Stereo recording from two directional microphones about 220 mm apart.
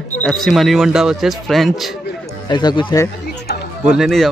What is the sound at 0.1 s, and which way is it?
Speech, 5° left (ahead or behind).